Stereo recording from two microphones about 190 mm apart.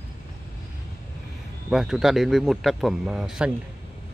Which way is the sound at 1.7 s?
Centre (ahead or behind).